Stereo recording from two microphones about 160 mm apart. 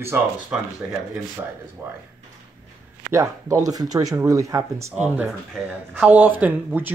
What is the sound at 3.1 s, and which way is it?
Speech, 20° right (ahead or behind).